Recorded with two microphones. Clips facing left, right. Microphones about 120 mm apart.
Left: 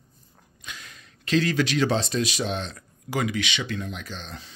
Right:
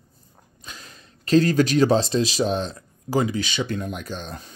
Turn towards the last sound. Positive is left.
turn(degrees=-45)  # may be behind; listen again after turning